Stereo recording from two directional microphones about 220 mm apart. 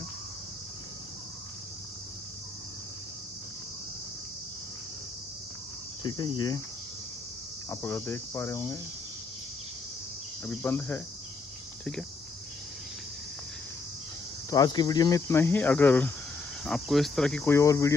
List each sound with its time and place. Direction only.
6.0 s cricket: 20° left (ahead or behind)
7.7 s cricket: 10° left (ahead or behind)
10.4 s cricket: 10° left (ahead or behind)
14.5 s cricket: 15° left (ahead or behind)